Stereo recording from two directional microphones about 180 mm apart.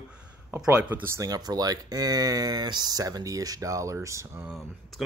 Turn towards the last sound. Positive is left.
turn(degrees=0)  # may be behind; listen again after turning